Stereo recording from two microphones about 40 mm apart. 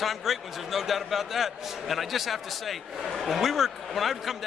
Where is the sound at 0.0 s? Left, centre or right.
Centre.